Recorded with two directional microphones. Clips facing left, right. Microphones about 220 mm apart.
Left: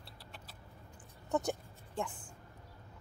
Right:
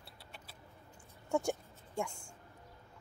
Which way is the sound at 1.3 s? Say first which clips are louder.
Even; 10° right (ahead or behind).